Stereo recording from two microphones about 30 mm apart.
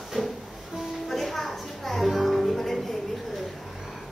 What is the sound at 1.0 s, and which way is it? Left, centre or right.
Music, centre.